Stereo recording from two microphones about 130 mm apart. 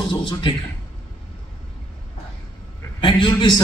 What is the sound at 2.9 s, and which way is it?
Speech, 40° left (ahead or behind).